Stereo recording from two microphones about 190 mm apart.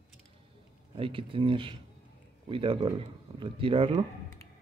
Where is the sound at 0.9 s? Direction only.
25° right (ahead or behind).